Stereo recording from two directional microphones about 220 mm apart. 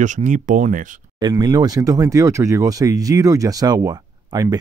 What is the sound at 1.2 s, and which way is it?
Speech, 20° right (ahead or behind).